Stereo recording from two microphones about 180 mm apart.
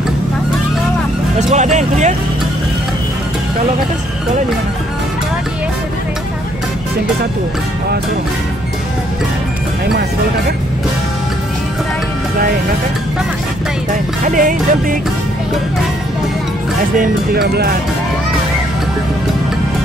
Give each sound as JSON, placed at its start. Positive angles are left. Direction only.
{"t": 1.5, "sound": "speech", "side_deg": -40}
{"t": 14.2, "sound": "speech", "side_deg": -50}
{"t": 17.0, "sound": "speech", "side_deg": -60}